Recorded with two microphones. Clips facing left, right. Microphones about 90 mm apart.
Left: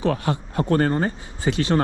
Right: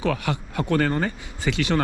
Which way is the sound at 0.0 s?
25° left (ahead or behind).